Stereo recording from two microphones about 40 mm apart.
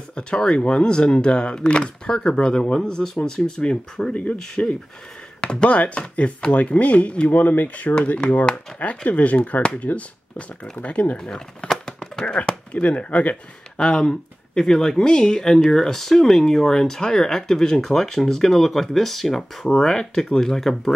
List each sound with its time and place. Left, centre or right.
0.1 s speech: left
4.1 s speech: left
4.4 s speech: left
7.9 s speech: left
11.1 s speech: centre
12.4 s speech: left
13.7 s speech: centre